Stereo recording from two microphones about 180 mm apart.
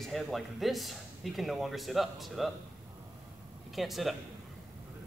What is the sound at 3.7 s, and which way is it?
Speech, centre (ahead or behind).